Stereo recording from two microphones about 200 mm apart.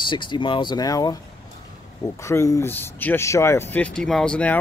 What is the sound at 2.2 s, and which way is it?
Speech, 15° left (ahead or behind).